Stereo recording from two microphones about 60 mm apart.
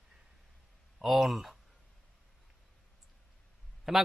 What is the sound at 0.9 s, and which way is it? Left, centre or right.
Speech, centre.